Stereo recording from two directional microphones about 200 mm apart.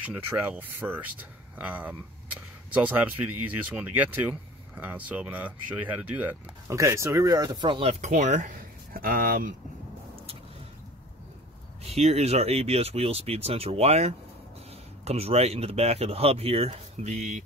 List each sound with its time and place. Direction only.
0.1 s speech: 10° right (ahead or behind)
7.9 s speech: 35° right (ahead or behind)
11.8 s speech: 30° right (ahead or behind)